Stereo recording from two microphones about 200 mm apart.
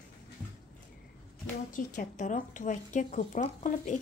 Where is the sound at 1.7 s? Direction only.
40° left (ahead or behind).